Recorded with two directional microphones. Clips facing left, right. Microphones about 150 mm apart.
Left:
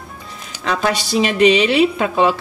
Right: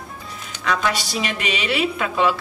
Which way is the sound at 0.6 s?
30° left (ahead or behind).